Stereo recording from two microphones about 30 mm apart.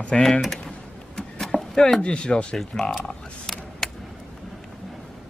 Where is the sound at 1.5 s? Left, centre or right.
Centre.